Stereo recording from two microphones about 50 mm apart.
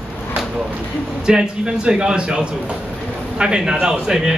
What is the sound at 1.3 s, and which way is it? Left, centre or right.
A man's voice, centre.